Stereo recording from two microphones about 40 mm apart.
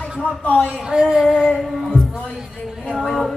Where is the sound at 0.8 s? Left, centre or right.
Centre.